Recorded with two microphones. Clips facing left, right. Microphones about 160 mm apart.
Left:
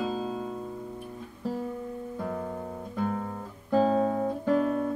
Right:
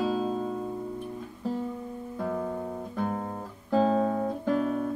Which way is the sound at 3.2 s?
25° right (ahead or behind).